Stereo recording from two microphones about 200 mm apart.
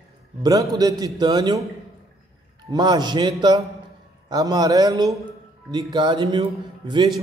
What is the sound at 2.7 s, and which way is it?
A man's voice, 20° right (ahead or behind).